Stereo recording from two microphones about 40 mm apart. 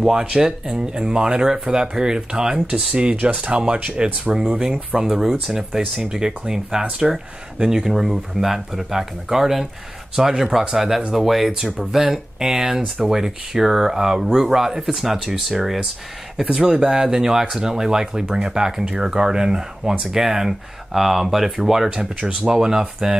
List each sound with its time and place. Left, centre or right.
0.0 s speech: centre
3.2 s speech: right; by 7.9 s centre
7.9 s speech: centre
16.5 s speech: centre